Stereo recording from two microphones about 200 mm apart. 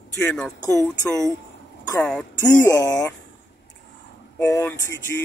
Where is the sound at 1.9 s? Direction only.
5° left (ahead or behind).